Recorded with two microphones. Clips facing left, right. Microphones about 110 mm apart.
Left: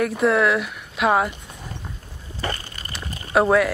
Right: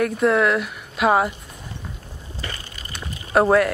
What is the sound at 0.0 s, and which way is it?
Speech, centre (ahead or behind).